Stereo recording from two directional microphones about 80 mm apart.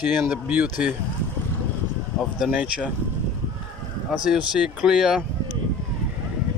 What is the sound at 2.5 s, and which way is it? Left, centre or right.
Speech, centre.